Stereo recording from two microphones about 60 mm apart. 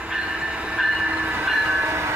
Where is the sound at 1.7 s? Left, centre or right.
Right.